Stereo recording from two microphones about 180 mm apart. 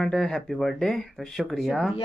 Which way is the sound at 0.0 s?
Centre (ahead or behind).